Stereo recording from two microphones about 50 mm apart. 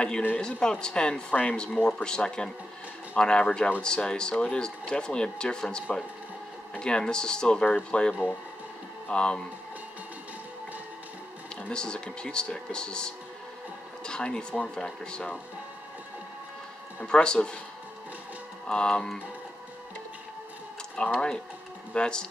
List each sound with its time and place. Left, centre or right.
0.4 s speech: centre
11.7 s speech: centre
17.0 s speech: centre
18.7 s speech: centre
20.9 s speech: centre